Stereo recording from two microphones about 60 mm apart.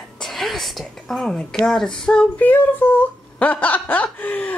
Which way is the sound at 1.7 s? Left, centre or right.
Centre.